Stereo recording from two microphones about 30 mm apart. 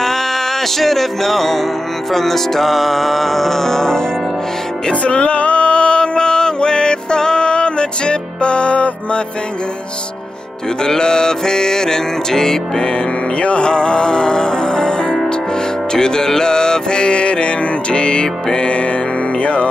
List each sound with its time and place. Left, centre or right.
0.7 s music: centre
5.0 s music: left
10.8 s music: left
13.4 s music: left
13.7 s music: left
16.3 s mantra: left
19.4 s music: left